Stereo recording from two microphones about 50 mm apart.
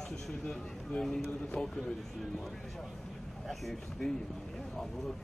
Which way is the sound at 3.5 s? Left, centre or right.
Centre.